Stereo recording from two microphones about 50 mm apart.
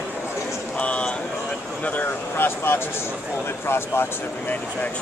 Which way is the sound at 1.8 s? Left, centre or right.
Left.